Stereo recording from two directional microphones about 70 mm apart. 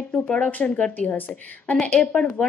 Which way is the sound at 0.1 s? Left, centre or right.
Left.